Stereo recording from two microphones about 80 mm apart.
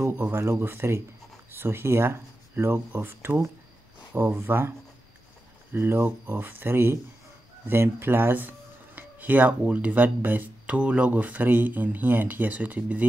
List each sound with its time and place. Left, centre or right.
0.2 s speech: right